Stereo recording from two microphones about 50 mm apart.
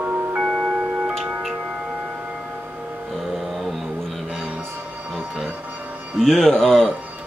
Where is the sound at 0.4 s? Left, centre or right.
Centre.